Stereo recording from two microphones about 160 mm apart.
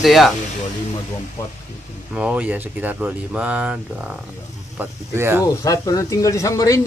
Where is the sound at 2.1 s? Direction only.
5° right (ahead or behind).